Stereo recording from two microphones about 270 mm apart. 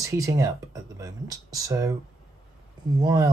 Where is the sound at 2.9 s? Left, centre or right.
Centre.